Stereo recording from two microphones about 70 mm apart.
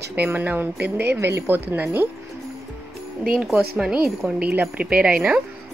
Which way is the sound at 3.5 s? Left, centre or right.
Centre.